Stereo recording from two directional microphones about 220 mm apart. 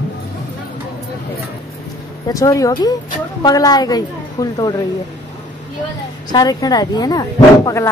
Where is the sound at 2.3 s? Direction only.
15° left (ahead or behind).